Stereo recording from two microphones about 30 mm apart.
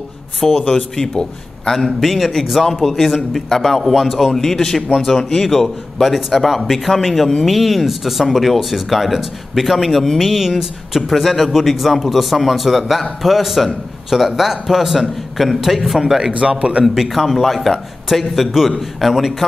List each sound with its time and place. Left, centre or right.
0.6 s a man's voice: left
1.7 s a man's voice: centre
9.8 s a man's voice: centre
10.3 s a man's voice: centre
16.3 s a man's voice: right
17.1 s speech: centre